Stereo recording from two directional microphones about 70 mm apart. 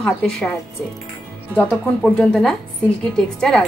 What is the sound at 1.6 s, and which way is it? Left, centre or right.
A woman's voice, centre.